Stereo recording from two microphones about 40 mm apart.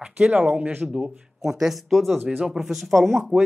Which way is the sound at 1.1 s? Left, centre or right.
Centre.